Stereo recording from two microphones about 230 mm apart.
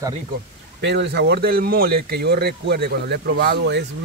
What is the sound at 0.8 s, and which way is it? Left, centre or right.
Speech, right.